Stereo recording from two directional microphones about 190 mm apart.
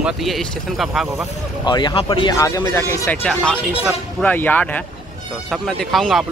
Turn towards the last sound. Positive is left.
turn(degrees=0)  # may be behind; listen again after turning